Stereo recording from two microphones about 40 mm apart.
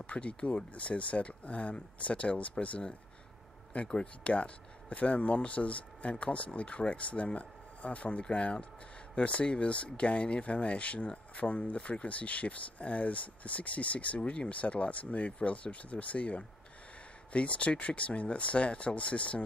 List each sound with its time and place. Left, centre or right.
0.0 s speech: left
3.7 s speech: left
4.3 s speech: left